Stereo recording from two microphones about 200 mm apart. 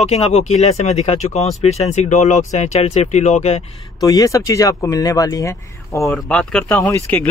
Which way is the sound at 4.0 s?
15° left (ahead or behind).